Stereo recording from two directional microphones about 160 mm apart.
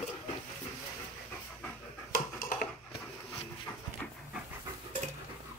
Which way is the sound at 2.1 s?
60° left (ahead or behind).